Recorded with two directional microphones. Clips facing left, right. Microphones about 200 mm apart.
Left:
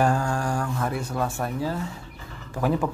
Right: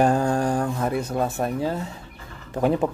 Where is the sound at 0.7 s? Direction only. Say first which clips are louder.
Right 4 dB; 20° right (ahead or behind).